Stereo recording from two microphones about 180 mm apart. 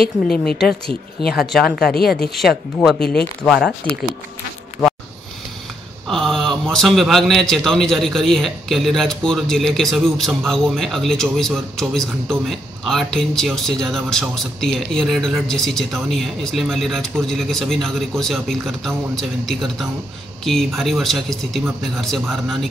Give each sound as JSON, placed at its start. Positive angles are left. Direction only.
{"t": 0.3, "sound": "a man's voice", "side_deg": 5}
{"t": 1.9, "sound": "speech", "side_deg": 60}
{"t": 2.1, "sound": "a man's voice", "side_deg": 0}
{"t": 6.0, "sound": "a man's voice", "side_deg": 0}